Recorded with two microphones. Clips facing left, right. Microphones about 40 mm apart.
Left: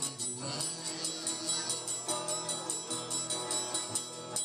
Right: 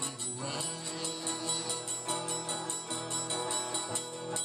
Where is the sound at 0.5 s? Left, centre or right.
Right.